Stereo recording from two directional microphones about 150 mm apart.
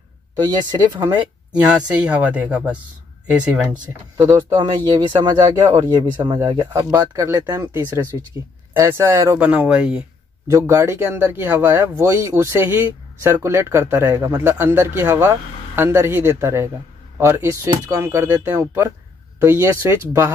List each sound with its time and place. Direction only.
0.4 s speech: 30° right (ahead or behind)
1.5 s speech: 10° right (ahead or behind)
4.2 s speech: 15° right (ahead or behind)
5.2 s speech: 30° right (ahead or behind); by 10.0 s 5° right (ahead or behind)
10.5 s speech: 20° right (ahead or behind)